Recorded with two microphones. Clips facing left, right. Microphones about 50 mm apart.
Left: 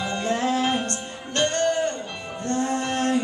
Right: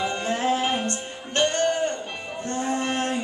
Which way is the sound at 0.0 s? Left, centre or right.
Right.